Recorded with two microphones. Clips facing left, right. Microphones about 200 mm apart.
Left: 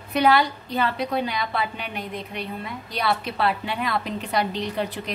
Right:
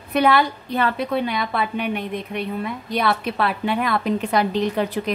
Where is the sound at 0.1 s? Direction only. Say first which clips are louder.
Right 2 dB; 55° right (ahead or behind).